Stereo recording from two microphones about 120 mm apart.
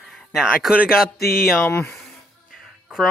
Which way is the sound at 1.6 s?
20° left (ahead or behind).